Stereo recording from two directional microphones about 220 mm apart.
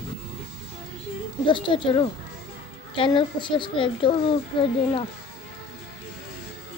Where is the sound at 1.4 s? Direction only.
20° left (ahead or behind).